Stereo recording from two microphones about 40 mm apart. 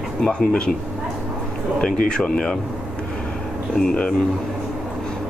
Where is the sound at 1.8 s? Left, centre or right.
Left.